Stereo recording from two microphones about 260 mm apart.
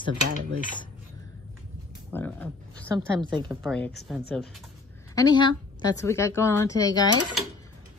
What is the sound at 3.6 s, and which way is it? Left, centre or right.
Speech, centre.